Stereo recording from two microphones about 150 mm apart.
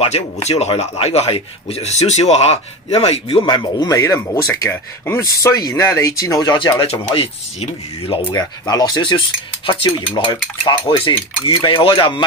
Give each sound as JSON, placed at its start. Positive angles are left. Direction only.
{"t": 0.0, "sound": "speech", "side_deg": 45}
{"t": 8.4, "sound": "speech", "side_deg": 25}